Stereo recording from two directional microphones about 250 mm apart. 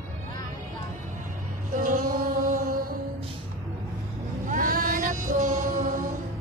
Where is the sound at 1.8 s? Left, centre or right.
Right.